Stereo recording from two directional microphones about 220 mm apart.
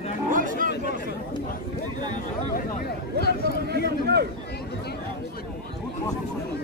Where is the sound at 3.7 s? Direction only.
50° right (ahead or behind).